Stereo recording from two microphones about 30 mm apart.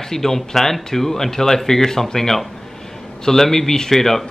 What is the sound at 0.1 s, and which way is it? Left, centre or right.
Speech, centre.